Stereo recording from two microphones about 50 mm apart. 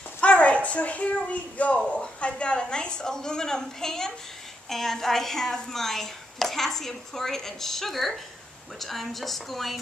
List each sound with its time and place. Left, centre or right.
0.2 s a woman's voice: left; by 9.8 s centre